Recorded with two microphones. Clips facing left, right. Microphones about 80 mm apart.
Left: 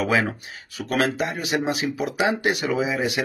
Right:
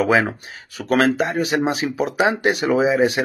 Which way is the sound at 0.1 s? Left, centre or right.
Right.